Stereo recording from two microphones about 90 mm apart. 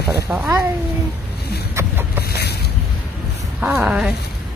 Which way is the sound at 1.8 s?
25° right (ahead or behind).